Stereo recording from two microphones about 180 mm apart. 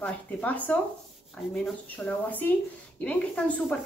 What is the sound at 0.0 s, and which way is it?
Speech, 5° left (ahead or behind).